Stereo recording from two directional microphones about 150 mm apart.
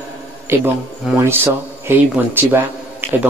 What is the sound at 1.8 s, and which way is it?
Speech, 15° right (ahead or behind).